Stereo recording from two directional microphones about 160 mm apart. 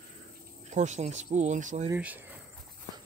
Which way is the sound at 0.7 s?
45° right (ahead or behind).